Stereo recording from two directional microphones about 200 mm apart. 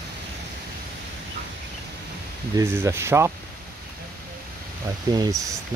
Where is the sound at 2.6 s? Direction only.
15° right (ahead or behind).